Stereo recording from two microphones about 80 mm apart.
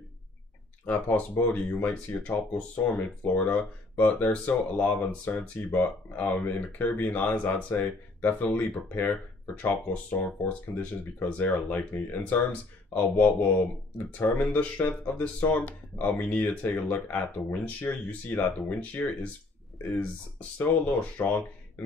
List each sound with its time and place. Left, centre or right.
0.8 s speech: left